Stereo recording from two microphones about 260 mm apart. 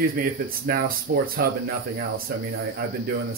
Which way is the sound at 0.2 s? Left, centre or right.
Right.